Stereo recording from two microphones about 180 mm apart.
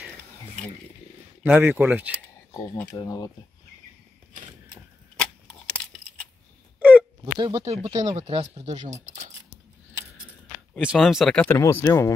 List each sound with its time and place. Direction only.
1.4 s speech: 10° right (ahead or behind)
2.5 s speech: 15° left (ahead or behind)
5.2 s keys jangling: 5° left (ahead or behind)
6.8 s a sound: 10° right (ahead or behind)
7.3 s speech: 30° right (ahead or behind)
7.9 s speech: 25° right (ahead or behind)
8.2 s speech: 35° right (ahead or behind)
10.8 s speech: 5° right (ahead or behind)
11.8 s speech: 15° left (ahead or behind)